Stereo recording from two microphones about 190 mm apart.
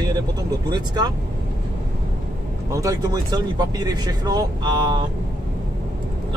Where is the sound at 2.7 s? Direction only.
20° right (ahead or behind).